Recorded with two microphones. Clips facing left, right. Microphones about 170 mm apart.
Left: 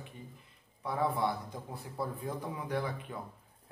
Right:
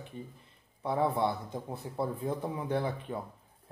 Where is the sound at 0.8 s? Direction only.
25° right (ahead or behind).